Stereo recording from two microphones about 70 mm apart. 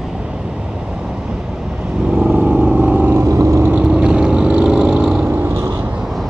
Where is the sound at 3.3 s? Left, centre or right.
Right.